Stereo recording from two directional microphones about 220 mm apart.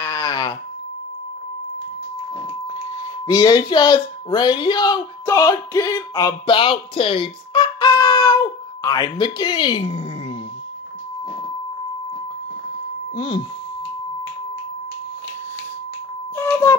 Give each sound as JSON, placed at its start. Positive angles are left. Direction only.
{"t": 0.0, "sound": "a sound", "side_deg": 15}
{"t": 3.3, "sound": "speech", "side_deg": 20}
{"t": 13.1, "sound": "speech", "side_deg": 20}
{"t": 16.3, "sound": "music", "side_deg": 10}